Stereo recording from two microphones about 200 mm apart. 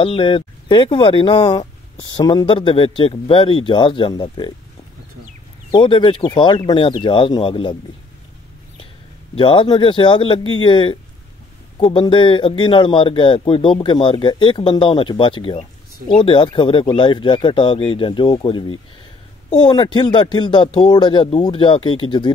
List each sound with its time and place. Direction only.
0.0 s speech: 25° left (ahead or behind)
5.7 s speech: 25° left (ahead or behind)
9.3 s speech: 25° left (ahead or behind)
19.6 s speech: 20° left (ahead or behind)